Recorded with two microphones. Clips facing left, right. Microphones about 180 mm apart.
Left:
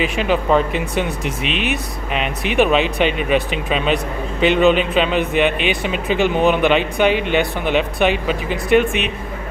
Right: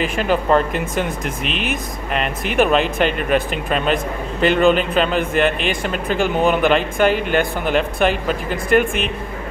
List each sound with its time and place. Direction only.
0.0 s speech: 45° right (ahead or behind)
0.3 s a man's voice: centre (ahead or behind)
1.4 s speech: 45° right (ahead or behind)
2.5 s a man's voice: centre (ahead or behind)